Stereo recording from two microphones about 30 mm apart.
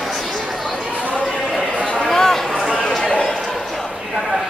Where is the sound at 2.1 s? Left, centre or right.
Centre.